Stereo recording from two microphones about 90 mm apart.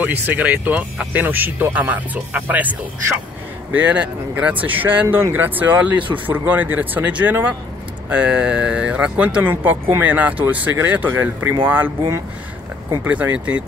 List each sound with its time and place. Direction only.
0.0 s speech: 15° right (ahead or behind)
3.7 s speech: 15° right (ahead or behind)
13.0 s speech: 15° right (ahead or behind)